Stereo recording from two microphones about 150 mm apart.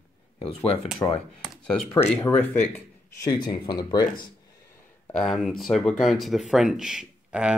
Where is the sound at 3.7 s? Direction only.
30° left (ahead or behind).